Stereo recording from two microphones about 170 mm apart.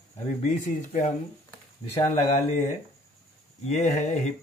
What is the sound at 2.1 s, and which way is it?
Speech, 40° left (ahead or behind).